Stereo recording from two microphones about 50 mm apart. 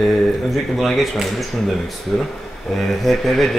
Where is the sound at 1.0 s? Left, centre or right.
Centre.